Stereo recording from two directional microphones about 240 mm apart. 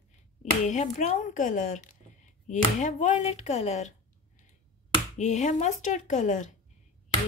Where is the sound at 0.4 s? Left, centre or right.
Left.